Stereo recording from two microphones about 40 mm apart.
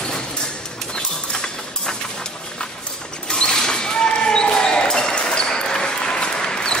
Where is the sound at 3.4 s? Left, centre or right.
Centre.